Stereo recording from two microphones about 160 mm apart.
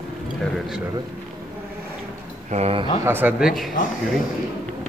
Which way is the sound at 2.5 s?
40° right (ahead or behind).